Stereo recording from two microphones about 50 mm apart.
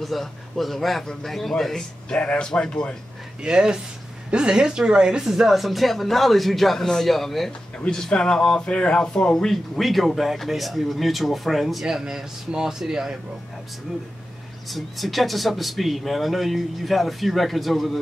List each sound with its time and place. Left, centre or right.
0.0 s speech: centre
2.0 s speech: left
3.4 s speech: centre
7.8 s speech: centre
9.8 s speech: centre
14.7 s speech: centre